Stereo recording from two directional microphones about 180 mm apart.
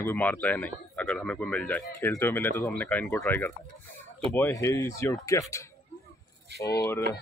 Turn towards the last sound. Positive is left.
turn(degrees=15)  # may be behind; listen again after turning